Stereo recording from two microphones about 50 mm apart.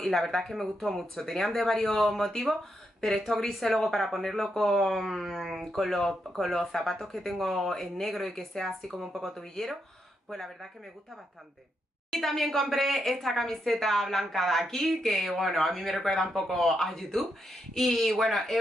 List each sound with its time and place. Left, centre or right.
0.0 s speech: centre
12.1 s speech: centre